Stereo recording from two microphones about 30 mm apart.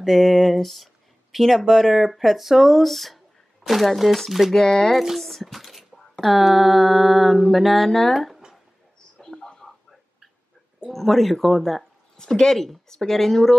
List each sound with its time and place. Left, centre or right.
0.0 s speech: centre
4.5 s speech: centre
5.1 s speech: centre
7.6 s speech: centre
9.2 s a sound: centre
10.9 s speech: centre
12.2 s speech: left